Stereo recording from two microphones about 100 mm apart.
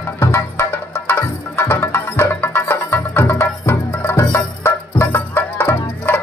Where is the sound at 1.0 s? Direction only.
20° left (ahead or behind).